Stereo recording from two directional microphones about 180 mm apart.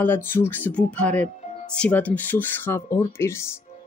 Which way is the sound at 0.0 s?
10° left (ahead or behind).